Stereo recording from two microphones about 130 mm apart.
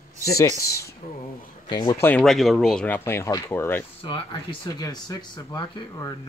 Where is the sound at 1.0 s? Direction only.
90° left.